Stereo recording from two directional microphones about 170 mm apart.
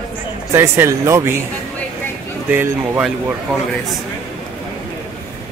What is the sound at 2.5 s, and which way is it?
Speech, 10° right (ahead or behind).